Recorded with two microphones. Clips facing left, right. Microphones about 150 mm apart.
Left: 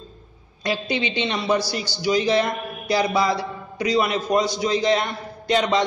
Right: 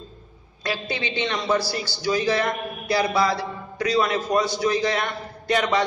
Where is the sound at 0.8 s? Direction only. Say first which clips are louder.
Left 2 dB; 20° left (ahead or behind).